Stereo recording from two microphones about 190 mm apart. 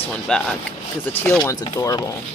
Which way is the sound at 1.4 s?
15° left (ahead or behind).